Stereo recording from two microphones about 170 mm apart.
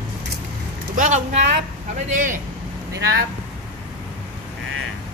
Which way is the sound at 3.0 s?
70° right (ahead or behind).